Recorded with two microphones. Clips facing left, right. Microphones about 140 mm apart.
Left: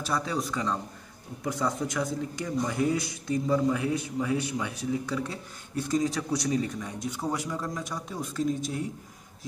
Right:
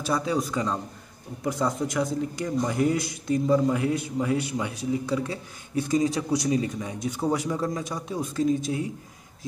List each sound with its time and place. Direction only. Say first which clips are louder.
0.1 s a man's voice: right 4 dB; 10° right (ahead or behind)
8.5 s speech: right 4 dB; 90° right